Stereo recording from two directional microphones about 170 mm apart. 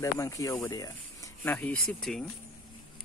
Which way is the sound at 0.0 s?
20° left (ahead or behind).